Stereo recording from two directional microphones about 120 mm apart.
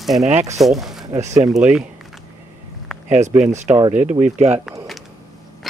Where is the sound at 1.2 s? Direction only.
75° right (ahead or behind).